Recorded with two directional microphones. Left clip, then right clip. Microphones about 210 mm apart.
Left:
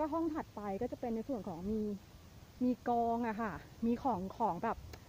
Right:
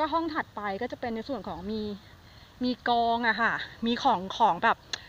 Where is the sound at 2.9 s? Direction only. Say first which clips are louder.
Right 9 dB; 20° right (ahead or behind).